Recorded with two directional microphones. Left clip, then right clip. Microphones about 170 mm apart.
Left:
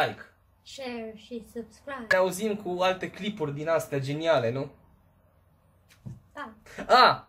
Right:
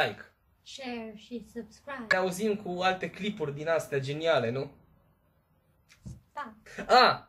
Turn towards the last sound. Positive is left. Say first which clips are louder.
# left 2 dB
turn(degrees=20)  # may be behind; listen again after turning